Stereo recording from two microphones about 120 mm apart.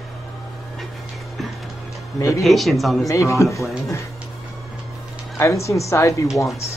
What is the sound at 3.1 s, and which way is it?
Speech, 25° left (ahead or behind).